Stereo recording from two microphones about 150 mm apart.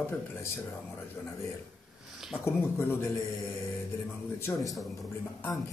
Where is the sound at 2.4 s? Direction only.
15° left (ahead or behind).